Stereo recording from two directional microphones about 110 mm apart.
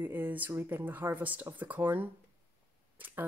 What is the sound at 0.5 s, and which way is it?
Speech, 20° right (ahead or behind).